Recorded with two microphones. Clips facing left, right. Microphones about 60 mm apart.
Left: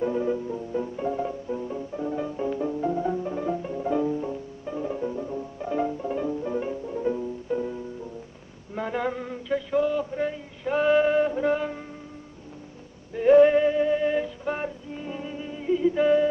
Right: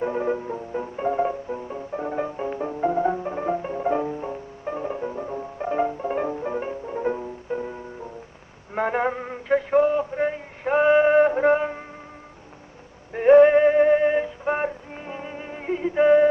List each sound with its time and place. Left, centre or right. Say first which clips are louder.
0.0 s music: right 1 dB; right
8.7 s a sound: right 5 dB; right
9.5 s male singing: right 5 dB; right
11.1 s music: right 6 dB; right
13.1 s synthetic singing: right 3 dB; right